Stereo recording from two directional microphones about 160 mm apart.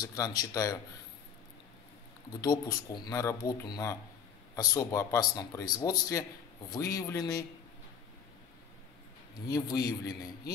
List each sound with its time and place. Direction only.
0.0 s speech: 25° left (ahead or behind)
2.4 s speech: 25° left (ahead or behind)
9.5 s speech: 25° left (ahead or behind)